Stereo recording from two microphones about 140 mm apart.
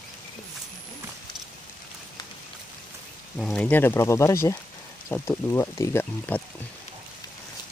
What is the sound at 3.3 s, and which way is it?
Speech, 5° left (ahead or behind).